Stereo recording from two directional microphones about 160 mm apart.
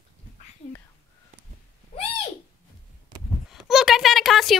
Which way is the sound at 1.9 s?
40° left (ahead or behind).